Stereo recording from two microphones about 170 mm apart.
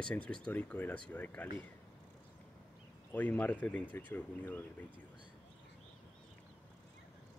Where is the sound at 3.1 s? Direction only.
10° left (ahead or behind).